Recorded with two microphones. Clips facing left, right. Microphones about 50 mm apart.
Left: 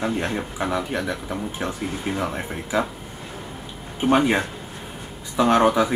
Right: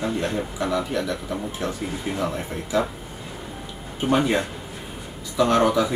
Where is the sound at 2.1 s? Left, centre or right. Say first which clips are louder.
Left 2 dB; left.